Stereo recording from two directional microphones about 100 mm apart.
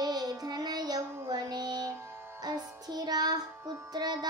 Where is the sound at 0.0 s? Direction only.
40° right (ahead or behind).